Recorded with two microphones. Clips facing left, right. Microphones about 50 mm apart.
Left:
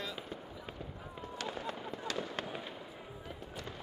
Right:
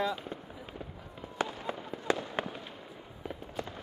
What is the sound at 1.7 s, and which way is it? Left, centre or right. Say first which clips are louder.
Fireworks: right 4 dB; centre.